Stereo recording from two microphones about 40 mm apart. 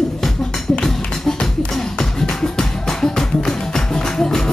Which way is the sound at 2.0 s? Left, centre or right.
Centre.